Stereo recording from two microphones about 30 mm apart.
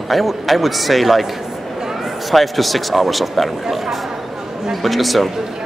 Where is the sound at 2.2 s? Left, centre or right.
Centre.